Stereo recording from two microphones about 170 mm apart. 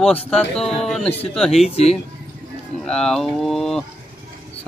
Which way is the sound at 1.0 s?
35° left (ahead or behind).